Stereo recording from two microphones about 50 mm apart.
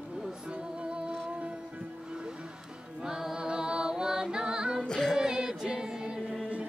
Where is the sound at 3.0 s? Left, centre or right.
Centre.